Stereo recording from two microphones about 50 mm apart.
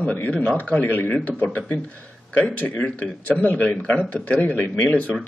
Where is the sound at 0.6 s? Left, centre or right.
Left.